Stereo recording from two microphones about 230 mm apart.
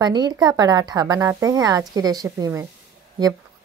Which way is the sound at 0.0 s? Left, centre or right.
Centre.